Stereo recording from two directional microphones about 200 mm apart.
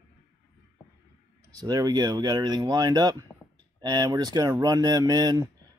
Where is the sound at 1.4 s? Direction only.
20° right (ahead or behind).